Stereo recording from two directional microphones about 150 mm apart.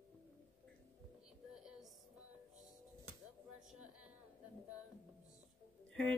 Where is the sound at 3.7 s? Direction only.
5° right (ahead or behind).